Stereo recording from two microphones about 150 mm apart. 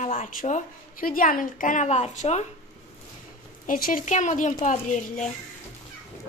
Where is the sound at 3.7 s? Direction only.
65° left (ahead or behind).